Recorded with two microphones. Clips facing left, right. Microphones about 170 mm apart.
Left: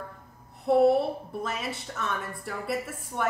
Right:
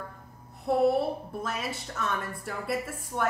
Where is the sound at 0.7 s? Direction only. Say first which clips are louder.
Left 3 dB; centre (ahead or behind).